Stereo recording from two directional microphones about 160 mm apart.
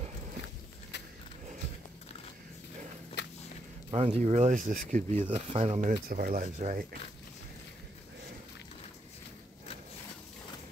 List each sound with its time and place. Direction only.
3.2 s walk: 90° left
3.9 s speech: 35° right (ahead or behind)
5.9 s speech: 60° right (ahead or behind)